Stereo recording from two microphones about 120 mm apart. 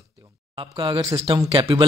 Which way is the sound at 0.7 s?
40° right (ahead or behind).